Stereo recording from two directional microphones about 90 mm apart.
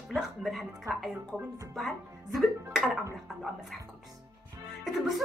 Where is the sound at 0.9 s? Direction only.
35° right (ahead or behind).